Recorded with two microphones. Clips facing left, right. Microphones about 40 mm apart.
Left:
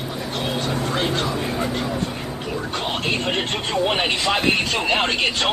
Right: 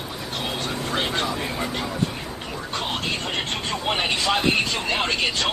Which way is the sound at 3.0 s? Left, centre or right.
Left.